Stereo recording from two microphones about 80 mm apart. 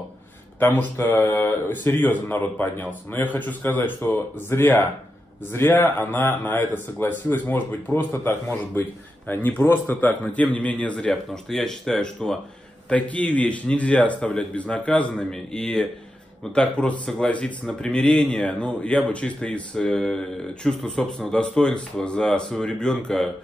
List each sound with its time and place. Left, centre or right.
0.6 s speech: left; by 12.4 s centre
12.9 s speech: centre